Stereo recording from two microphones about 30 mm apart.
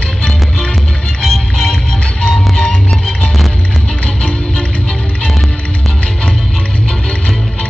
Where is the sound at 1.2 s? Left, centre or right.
Centre.